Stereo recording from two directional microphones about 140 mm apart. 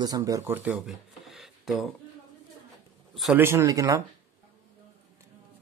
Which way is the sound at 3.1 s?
Centre (ahead or behind).